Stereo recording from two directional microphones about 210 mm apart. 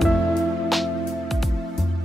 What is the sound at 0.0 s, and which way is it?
Music, centre (ahead or behind).